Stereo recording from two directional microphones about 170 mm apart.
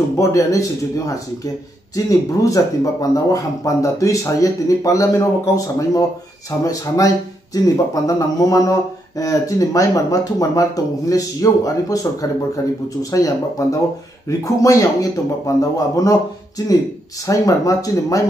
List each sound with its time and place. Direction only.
0.2 s speech: 20° left (ahead or behind)